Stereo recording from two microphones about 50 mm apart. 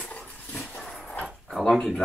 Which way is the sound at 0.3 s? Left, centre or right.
Left.